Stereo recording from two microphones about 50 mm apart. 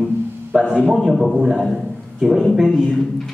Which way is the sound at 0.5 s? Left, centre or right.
Centre.